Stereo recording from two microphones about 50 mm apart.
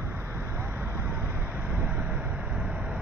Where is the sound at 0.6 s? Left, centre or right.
Right.